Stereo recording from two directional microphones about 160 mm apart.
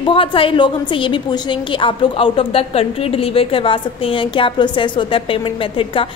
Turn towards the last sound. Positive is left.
turn(degrees=35)  # may be behind; listen again after turning